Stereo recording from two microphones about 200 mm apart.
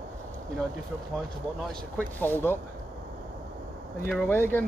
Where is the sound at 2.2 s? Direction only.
10° left (ahead or behind).